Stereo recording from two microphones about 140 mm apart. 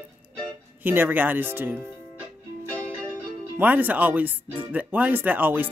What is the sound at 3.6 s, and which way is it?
Speech, 10° right (ahead or behind).